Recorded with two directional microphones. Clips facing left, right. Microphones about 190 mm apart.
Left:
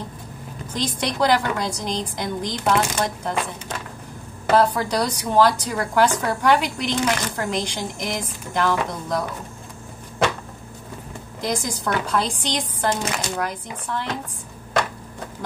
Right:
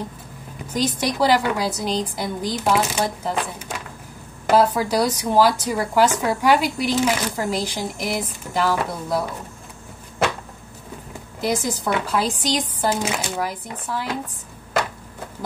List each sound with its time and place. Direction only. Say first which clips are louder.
0.7 s speech: right 2 dB; 10° right (ahead or behind)
11.4 s speech: right 2 dB; 5° right (ahead or behind)